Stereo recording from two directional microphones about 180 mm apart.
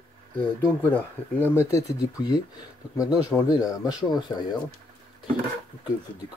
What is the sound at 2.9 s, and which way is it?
Speech, 20° left (ahead or behind).